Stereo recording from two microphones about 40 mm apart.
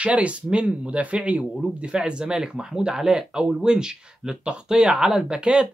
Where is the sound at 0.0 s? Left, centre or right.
Right.